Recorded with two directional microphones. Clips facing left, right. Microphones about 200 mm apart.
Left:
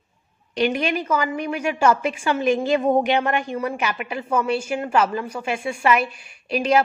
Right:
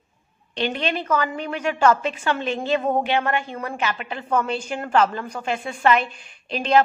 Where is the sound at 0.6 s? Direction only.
10° left (ahead or behind).